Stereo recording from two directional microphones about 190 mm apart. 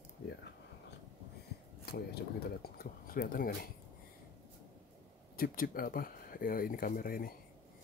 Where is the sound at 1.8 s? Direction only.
55° left (ahead or behind).